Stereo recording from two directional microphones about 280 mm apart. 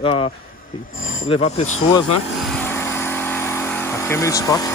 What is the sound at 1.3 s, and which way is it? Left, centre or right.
Speech, left.